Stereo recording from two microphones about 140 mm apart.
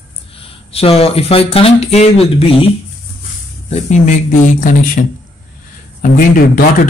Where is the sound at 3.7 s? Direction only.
60° left (ahead or behind).